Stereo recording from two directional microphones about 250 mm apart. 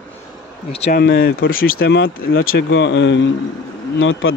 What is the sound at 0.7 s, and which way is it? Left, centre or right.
Speech, left.